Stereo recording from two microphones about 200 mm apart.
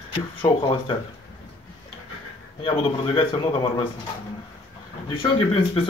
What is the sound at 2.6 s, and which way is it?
Speech, 25° left (ahead or behind).